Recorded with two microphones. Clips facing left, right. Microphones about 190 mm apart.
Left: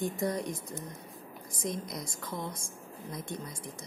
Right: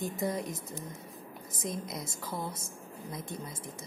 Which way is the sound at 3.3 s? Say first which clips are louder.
Even; 25° right (ahead or behind).